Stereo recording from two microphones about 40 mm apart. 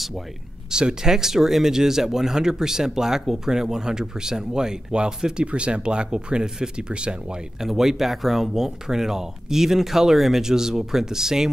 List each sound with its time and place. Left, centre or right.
0.7 s speech: centre
7.6 s speech: centre